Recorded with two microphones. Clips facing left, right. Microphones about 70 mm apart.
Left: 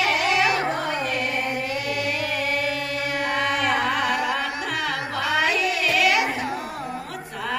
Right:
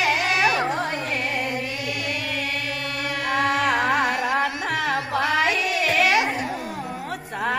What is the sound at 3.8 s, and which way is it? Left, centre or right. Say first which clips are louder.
Music: right 1 dB; right.